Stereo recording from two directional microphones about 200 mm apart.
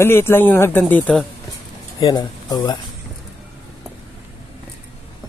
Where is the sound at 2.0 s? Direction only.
20° left (ahead or behind).